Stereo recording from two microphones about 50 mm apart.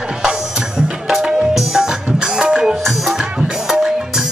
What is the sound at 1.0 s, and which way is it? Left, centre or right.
Music, centre.